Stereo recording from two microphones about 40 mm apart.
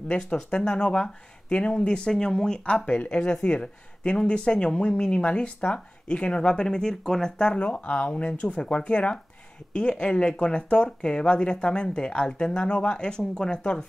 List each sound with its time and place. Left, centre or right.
0.1 s speech: left
7.5 s speech: left